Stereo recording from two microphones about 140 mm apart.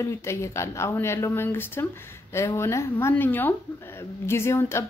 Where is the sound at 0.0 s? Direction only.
20° left (ahead or behind).